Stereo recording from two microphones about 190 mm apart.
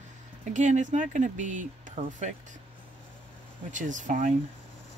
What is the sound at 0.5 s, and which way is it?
Speech, 40° right (ahead or behind).